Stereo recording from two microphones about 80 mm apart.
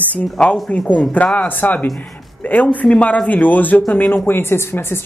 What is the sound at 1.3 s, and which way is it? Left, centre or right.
Speech, left.